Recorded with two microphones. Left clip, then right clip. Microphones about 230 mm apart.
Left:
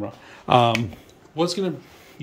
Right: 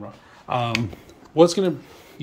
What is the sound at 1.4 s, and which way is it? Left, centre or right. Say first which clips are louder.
Speech: right 7 dB; centre.